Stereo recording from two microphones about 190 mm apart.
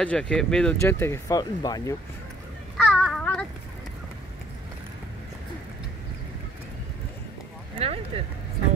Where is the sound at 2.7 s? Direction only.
Centre (ahead or behind).